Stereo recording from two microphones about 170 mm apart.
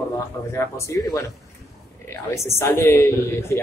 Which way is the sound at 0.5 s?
15° left (ahead or behind).